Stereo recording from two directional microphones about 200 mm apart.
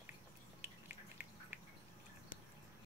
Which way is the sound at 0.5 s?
10° right (ahead or behind).